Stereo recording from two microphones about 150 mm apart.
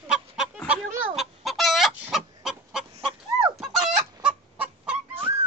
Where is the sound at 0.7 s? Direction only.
Centre (ahead or behind).